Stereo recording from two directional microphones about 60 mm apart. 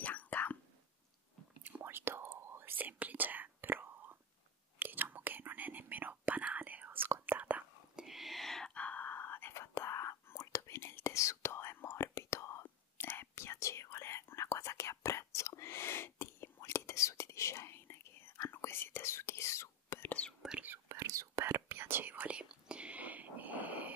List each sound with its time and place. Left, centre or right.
0.0 s whispering: left
1.8 s whispering: right
7.9 s whispering: centre
8.7 s whispering: left
9.5 s whispering: left
12.6 s whispering: left
20.4 s whispering: centre
20.9 s whispering: right
21.5 s whispering: right
22.4 s whispering: centre